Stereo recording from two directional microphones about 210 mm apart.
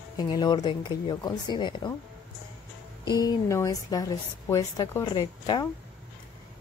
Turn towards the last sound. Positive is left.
turn(degrees=20)  # may be behind; listen again after turning